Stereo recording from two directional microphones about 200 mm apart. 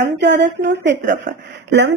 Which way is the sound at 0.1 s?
60° right (ahead or behind).